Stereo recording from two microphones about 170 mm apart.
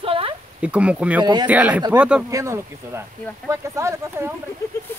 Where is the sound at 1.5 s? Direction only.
10° right (ahead or behind).